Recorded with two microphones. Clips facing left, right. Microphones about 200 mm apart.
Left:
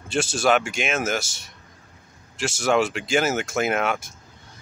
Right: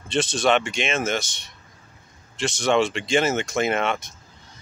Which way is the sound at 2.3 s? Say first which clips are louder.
Even; 5° left (ahead or behind).